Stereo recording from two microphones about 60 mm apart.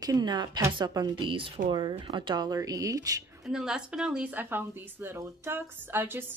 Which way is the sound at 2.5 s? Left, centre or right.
Right.